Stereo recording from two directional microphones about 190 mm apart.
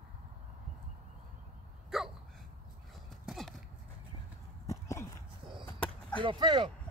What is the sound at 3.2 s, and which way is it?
Horse, centre (ahead or behind).